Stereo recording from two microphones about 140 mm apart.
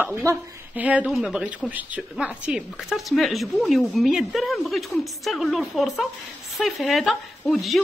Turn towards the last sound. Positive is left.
turn(degrees=0)  # may be behind; listen again after turning